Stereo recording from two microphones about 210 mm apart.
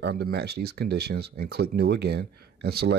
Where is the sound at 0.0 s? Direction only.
50° right (ahead or behind).